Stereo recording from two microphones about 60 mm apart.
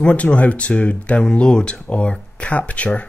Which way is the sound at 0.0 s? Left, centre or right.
Left.